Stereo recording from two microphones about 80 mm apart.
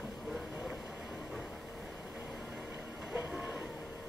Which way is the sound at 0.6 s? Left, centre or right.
Centre.